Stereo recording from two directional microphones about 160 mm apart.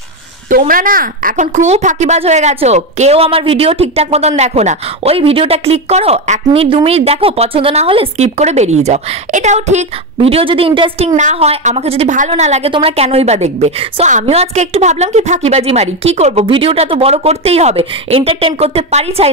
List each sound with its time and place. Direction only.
0.5 s a woman's voice: 60° right (ahead or behind)
10.3 s a woman's voice: 35° right (ahead or behind)
11.1 s a woman's voice: 45° right (ahead or behind)